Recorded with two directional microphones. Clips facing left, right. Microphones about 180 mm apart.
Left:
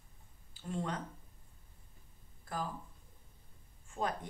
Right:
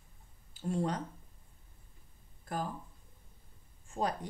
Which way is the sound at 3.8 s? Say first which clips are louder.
Right 3 dB; 35° right (ahead or behind).